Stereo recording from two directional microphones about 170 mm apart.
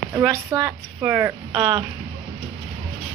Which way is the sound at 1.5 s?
30° right (ahead or behind).